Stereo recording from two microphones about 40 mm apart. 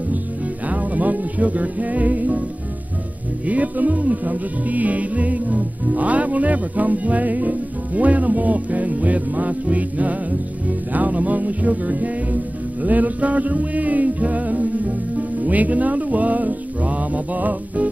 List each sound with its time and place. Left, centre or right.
0.7 s music: right
3.4 s music: right